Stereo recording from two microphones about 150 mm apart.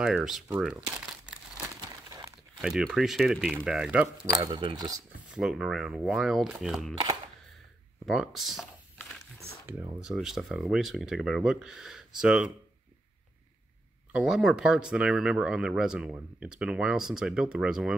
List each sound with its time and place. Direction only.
0.0 s speech: 5° right (ahead or behind)
1.8 s crumpling: 25° right (ahead or behind)
2.6 s speech: 5° right (ahead or behind)
4.3 s speech: 25° right (ahead or behind)
5.3 s speech: 5° right (ahead or behind)
8.0 s speech: centre (ahead or behind)
9.9 s speech: 5° right (ahead or behind)
14.1 s speech: 5° right (ahead or behind)